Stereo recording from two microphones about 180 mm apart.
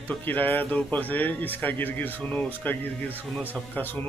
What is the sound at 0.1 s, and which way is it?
Speech, 10° left (ahead or behind).